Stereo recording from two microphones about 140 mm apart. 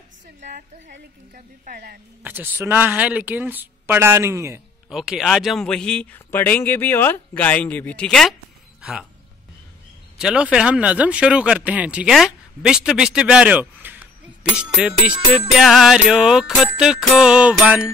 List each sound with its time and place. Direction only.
0.4 s a woman's voice: 70° right (ahead or behind)
2.2 s speech: 15° right (ahead or behind)
4.8 s speech: 5° right (ahead or behind)
10.1 s speech: 5° right (ahead or behind)
14.5 s music: 5° right (ahead or behind)
17.2 s speech: 5° right (ahead or behind)